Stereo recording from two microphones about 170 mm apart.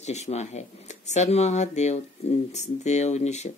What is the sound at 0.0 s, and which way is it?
Speech, 40° left (ahead or behind).